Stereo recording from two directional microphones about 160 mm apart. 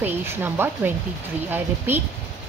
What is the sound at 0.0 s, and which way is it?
A woman's voice, 15° right (ahead or behind).